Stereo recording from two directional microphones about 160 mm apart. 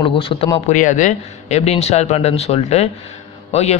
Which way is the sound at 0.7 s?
50° left (ahead or behind).